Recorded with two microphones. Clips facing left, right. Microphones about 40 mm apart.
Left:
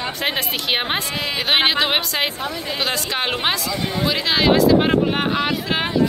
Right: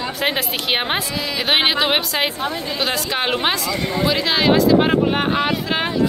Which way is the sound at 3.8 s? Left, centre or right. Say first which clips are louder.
Right 2 dB; right.